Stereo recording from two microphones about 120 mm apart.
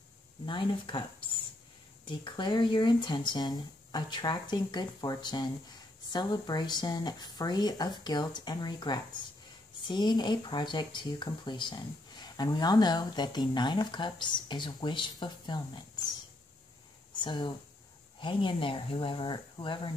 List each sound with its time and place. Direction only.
0.5 s speech: 40° left (ahead or behind)
2.0 s speech: 40° left (ahead or behind)
17.2 s speech: 40° left (ahead or behind)